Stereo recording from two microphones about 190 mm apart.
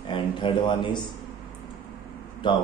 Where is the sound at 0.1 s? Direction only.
25° left (ahead or behind).